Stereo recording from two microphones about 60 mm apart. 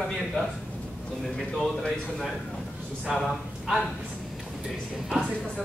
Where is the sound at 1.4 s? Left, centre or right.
Centre.